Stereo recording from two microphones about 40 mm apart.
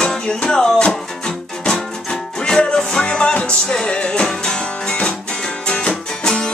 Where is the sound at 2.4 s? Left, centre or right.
Centre.